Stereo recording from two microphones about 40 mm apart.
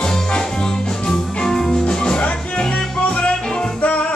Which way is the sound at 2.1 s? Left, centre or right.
Left.